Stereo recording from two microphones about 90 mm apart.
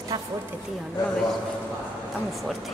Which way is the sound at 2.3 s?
Centre (ahead or behind).